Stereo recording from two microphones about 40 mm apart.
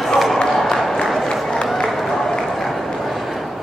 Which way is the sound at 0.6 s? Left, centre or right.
Centre.